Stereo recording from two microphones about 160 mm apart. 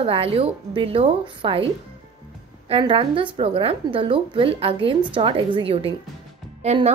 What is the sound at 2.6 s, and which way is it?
A woman's voice, 35° right (ahead or behind).